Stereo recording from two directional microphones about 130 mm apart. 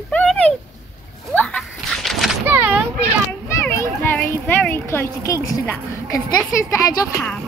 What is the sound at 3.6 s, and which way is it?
A child's voice, 20° left (ahead or behind).